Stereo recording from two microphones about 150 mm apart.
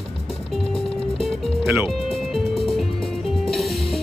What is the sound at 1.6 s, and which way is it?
Speech, 15° right (ahead or behind).